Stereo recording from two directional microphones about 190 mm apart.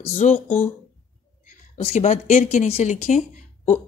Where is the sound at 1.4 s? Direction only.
35° left (ahead or behind).